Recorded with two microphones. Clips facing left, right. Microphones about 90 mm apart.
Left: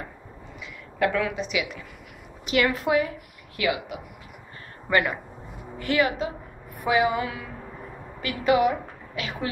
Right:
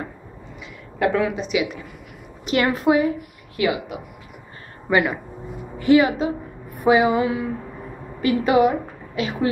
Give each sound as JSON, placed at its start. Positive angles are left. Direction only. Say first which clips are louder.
{"t": 0.9, "sound": "a woman's voice", "louder": "right 4 dB", "side_deg": -30}
{"t": 4.8, "sound": "a woman's voice", "louder": "right 4 dB", "side_deg": -15}